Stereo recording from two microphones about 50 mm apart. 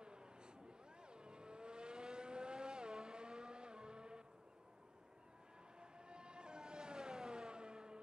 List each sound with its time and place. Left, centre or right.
0.0 s a sound: centre
1.0 s vehicle: centre
5.8 s vehicle: centre